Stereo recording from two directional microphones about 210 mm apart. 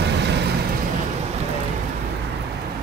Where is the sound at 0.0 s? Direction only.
55° right (ahead or behind).